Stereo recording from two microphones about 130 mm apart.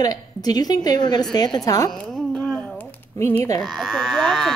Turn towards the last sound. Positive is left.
turn(degrees=5)  # may be behind; listen again after turning